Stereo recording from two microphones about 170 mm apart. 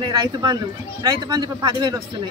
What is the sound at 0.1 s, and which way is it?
Speech, 25° right (ahead or behind).